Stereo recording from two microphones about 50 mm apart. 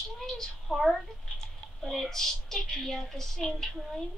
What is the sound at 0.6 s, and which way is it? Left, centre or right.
Speech, centre.